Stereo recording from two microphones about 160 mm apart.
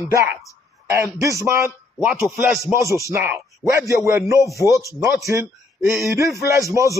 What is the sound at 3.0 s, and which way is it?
A man's voice, 15° right (ahead or behind).